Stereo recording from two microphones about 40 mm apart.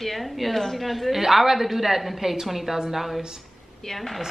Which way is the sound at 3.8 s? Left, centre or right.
Centre.